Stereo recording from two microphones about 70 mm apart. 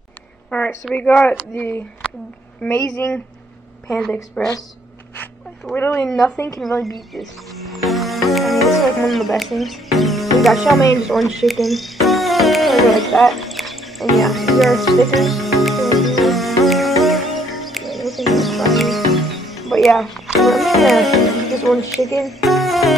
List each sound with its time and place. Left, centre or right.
0.5 s a sound: left
0.9 s speech: left
4.4 s a woman's voice: centre
5.8 s speech: left
6.0 s a woman's voice: centre
7.2 s music: centre
20.3 s speech: centre
22.2 s music: centre